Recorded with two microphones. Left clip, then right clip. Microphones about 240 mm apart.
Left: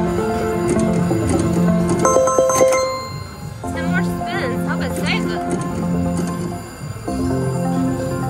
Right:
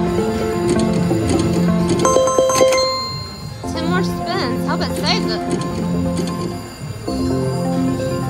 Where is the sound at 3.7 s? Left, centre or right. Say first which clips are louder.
Right 2 dB; right.